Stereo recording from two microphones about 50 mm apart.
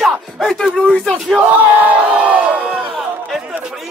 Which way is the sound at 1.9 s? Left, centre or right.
Right.